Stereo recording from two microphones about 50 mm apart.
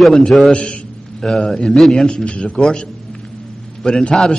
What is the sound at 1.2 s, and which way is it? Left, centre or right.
Speech, centre.